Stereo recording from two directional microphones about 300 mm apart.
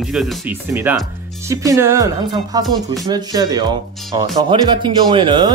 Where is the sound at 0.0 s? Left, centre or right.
Centre.